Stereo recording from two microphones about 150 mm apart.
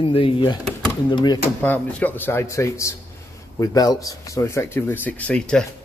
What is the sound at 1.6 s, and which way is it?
Speech, 10° left (ahead or behind).